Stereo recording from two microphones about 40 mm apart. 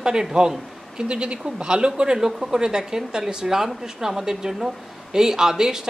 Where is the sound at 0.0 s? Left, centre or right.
Centre.